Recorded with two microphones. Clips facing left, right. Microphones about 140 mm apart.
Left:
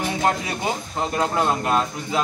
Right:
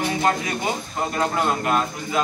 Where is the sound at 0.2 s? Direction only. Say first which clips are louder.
Even; 15° left (ahead or behind).